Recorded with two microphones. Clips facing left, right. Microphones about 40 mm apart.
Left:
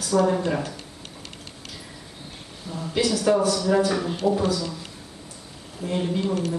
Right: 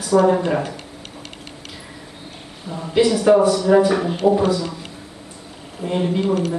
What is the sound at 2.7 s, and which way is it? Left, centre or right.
Speech, right.